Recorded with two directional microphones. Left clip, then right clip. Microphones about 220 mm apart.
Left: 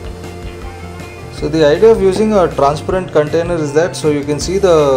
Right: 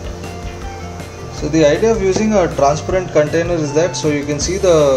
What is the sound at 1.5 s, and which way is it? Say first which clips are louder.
Speech: left 4 dB; 30° left (ahead or behind).